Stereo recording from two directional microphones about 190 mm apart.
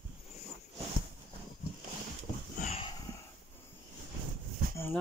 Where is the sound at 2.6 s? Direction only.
30° left (ahead or behind).